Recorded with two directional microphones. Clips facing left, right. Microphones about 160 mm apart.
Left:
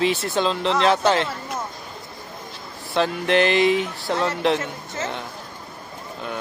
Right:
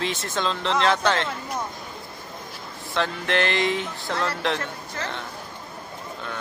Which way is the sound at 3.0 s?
15° left (ahead or behind).